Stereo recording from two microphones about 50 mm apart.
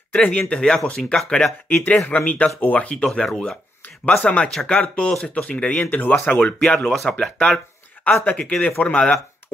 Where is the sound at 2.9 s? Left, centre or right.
Centre.